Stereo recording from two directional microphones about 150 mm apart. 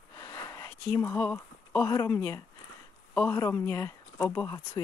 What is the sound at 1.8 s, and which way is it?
Speech, 20° left (ahead or behind).